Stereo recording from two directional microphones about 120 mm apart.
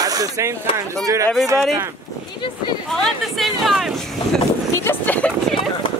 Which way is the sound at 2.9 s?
Centre (ahead or behind).